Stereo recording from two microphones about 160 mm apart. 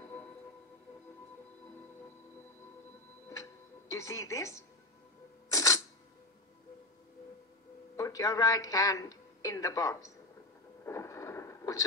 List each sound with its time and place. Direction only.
3.9 s speech: 20° left (ahead or behind)
5.5 s camera: 20° left (ahead or behind)
7.9 s speech: 20° left (ahead or behind)
10.9 s a sound: 20° left (ahead or behind)